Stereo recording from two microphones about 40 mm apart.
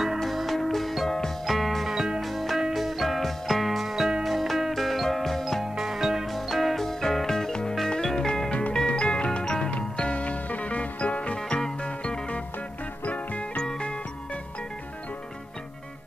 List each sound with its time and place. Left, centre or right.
0.2 s music: centre
2.0 s music: centre
2.2 s music: centre
5.6 s music: centre; by 11.3 s left
11.3 s music: centre; by 13.5 s left
13.6 s music: left